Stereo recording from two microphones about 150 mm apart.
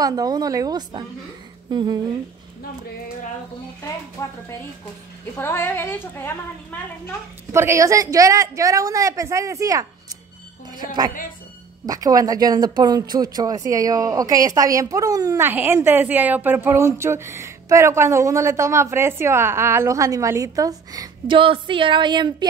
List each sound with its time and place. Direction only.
0.0 s speech: 25° right (ahead or behind)
1.7 s a sound: 30° right (ahead or behind)
4.2 s a woman's voice: 20° left (ahead or behind)
5.4 s a woman's voice: 15° left (ahead or behind)
7.5 s speech: 20° right (ahead or behind)
11.8 s speech: 25° right (ahead or behind)